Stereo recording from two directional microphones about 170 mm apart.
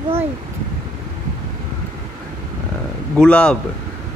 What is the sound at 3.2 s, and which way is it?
Speech, 5° left (ahead or behind).